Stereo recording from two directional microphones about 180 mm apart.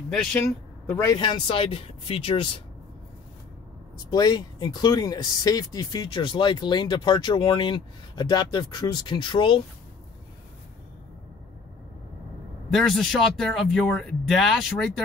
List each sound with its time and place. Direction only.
0.1 s speech: 5° left (ahead or behind)
1.1 s speech: 25° left (ahead or behind)
4.1 s speech: 25° left (ahead or behind)
12.7 s speech: centre (ahead or behind)